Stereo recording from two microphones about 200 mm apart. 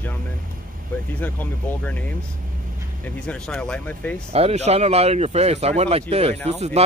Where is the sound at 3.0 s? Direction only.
5° left (ahead or behind).